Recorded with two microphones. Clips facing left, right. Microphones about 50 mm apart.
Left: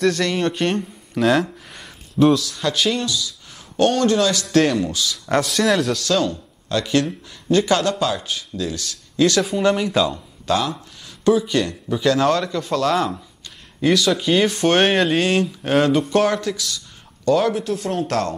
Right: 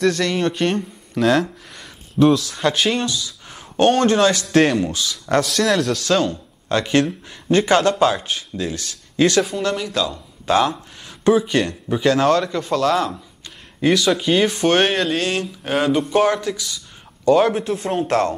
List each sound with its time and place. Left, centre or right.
0.0 s speech: centre
2.4 s speech: right
3.1 s a sound: right
4.0 s speech: right
5.1 s speech: centre
6.7 s speech: right
9.6 s speech: centre
10.4 s speech: right
12.2 s speech: centre
13.7 s speech: centre
17.4 s speech: right